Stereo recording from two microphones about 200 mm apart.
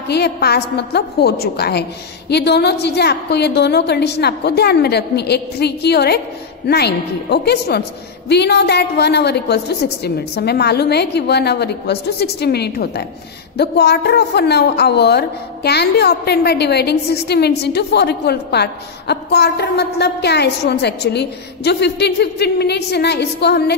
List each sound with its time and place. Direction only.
0.1 s speech: 55° left (ahead or behind)